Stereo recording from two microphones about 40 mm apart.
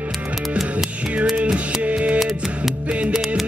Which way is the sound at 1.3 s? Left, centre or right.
Right.